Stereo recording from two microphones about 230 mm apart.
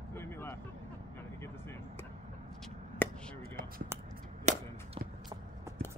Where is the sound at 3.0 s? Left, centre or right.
Centre.